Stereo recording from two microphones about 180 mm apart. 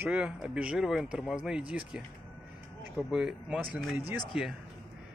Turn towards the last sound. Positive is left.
turn(degrees=0)  # may be behind; listen again after turning